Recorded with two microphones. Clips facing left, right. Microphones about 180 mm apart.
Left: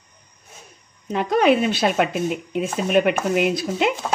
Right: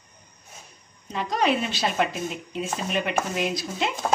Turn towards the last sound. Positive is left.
turn(degrees=60)  # may be behind; listen again after turning